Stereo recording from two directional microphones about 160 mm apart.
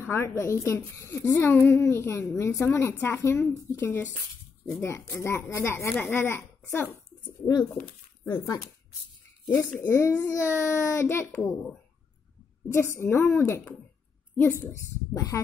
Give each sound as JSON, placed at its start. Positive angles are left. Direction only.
{"t": 0.0, "sound": "a woman's voice", "side_deg": 15}
{"t": 8.3, "sound": "a woman's voice", "side_deg": 15}
{"t": 13.0, "sound": "a woman's voice", "side_deg": 15}